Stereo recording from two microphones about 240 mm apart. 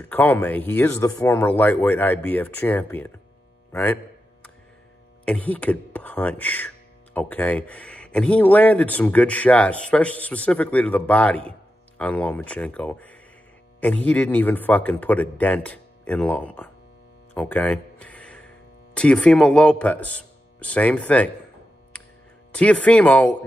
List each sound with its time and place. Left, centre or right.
0.1 s speech: centre
3.7 s a sound: centre
5.2 s speech: centre
21.9 s music: centre
22.5 s speech: centre